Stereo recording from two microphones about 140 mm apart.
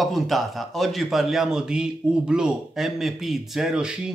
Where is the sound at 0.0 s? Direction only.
Centre (ahead or behind).